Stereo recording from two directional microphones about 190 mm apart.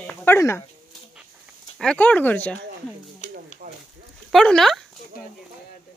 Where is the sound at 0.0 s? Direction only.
10° left (ahead or behind).